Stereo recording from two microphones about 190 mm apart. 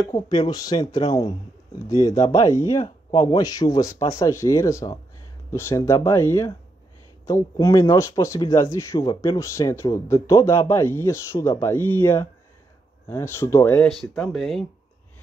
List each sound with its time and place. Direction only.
0.0 s speech: 20° left (ahead or behind)
14.2 s speech: centre (ahead or behind)